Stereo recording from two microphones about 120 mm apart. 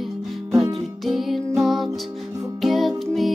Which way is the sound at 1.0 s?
Centre (ahead or behind).